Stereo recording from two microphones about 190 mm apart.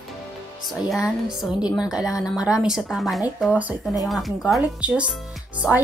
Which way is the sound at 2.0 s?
20° left (ahead or behind).